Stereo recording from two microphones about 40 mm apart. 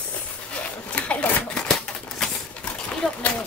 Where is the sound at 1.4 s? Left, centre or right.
Centre.